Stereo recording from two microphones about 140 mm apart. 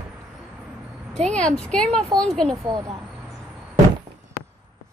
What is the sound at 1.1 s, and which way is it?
Speech, 5° left (ahead or behind).